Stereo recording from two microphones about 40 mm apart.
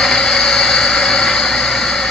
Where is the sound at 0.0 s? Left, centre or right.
Centre.